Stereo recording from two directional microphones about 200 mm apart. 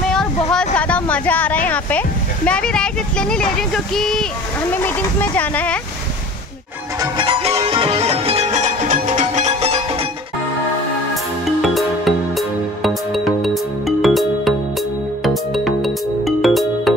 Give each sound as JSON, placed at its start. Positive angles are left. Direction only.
{"t": 0.1, "sound": "a sound", "side_deg": 5}
{"t": 0.7, "sound": "speech", "side_deg": 5}
{"t": 7.0, "sound": "music", "side_deg": -25}
{"t": 11.6, "sound": "music", "side_deg": 0}